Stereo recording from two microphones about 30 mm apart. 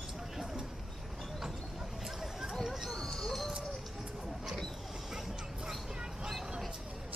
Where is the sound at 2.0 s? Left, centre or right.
Centre.